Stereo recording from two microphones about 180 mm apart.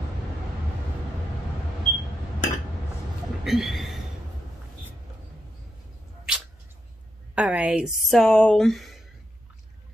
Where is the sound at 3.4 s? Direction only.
Centre (ahead or behind).